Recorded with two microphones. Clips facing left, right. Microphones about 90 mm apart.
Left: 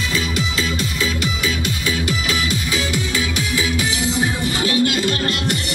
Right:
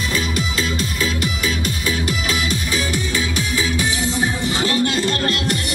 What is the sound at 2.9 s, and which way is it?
Music, 35° right (ahead or behind).